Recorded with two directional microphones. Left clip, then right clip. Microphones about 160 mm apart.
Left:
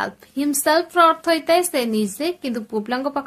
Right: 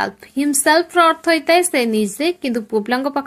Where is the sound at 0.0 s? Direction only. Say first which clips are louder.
Right 4 dB; 20° right (ahead or behind).